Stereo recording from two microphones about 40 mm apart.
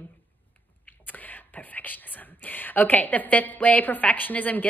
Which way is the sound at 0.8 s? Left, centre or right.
Left.